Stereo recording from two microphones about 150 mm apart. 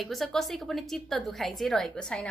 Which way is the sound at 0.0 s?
Centre (ahead or behind).